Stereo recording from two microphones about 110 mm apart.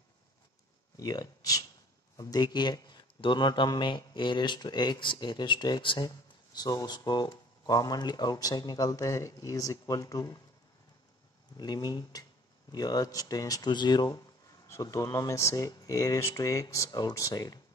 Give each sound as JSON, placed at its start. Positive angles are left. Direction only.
{"t": 0.9, "sound": "a man's voice", "side_deg": 35}
{"t": 11.5, "sound": "speech", "side_deg": 40}